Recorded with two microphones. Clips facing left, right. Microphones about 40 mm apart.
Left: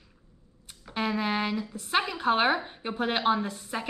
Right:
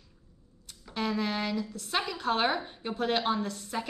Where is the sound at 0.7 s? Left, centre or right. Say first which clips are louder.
Left 2 dB; left.